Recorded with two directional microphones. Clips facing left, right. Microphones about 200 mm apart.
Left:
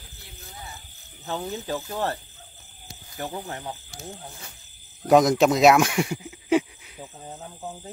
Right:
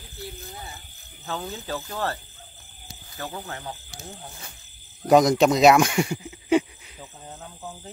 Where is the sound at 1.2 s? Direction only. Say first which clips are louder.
Left 2 dB; 20° left (ahead or behind).